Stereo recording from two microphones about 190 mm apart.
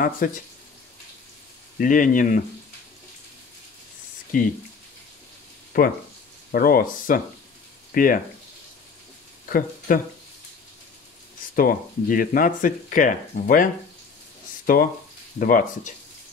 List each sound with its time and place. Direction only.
0.2 s speech: 45° left (ahead or behind)
1.8 s speech: 45° left (ahead or behind)
4.3 s speech: 45° left (ahead or behind)
5.7 s speech: 50° left (ahead or behind)
9.5 s speech: 50° left (ahead or behind)
11.5 s speech: 50° left (ahead or behind)
14.7 s speech: 50° left (ahead or behind)